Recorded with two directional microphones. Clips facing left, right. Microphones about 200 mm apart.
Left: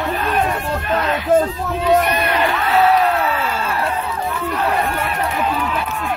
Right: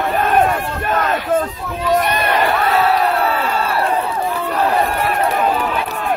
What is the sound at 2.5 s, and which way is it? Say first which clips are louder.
Crowd: left 1 dB; 40° right (ahead or behind).